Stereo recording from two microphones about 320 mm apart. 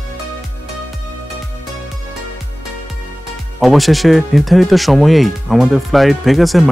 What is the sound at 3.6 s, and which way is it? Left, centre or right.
Speech, centre.